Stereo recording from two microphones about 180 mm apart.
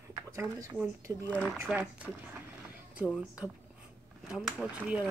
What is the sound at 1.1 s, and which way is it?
Speech, 20° right (ahead or behind).